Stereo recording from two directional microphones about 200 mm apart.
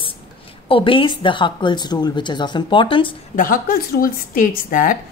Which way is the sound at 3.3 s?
45° left (ahead or behind).